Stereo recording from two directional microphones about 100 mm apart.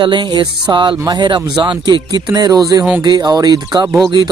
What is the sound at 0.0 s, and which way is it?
Speech, 50° right (ahead or behind).